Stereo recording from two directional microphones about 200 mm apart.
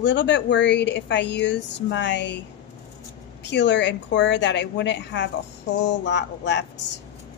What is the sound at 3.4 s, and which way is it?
A woman's voice, 60° left (ahead or behind).